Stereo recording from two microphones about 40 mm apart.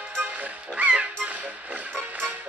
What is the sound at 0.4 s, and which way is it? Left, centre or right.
Music, right.